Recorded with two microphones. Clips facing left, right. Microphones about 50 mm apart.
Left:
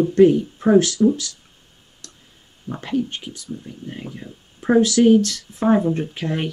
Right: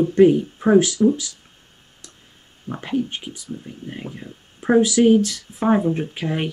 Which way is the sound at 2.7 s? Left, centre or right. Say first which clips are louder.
Even; centre.